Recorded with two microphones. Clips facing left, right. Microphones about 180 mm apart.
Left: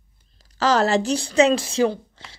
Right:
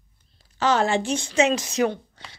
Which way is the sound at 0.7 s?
40° left (ahead or behind).